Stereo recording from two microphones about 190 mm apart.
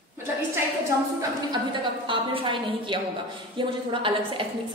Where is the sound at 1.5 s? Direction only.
25° right (ahead or behind).